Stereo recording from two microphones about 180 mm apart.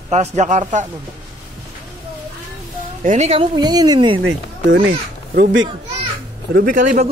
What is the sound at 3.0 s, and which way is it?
Speech, 40° right (ahead or behind).